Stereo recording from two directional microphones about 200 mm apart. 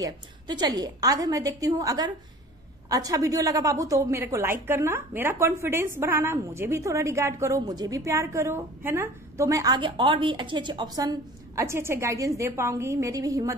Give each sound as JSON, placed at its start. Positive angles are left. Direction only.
{"t": 0.0, "sound": "a woman's voice", "side_deg": -20}